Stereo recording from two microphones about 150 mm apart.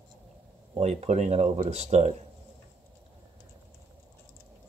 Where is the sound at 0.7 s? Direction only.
45° right (ahead or behind).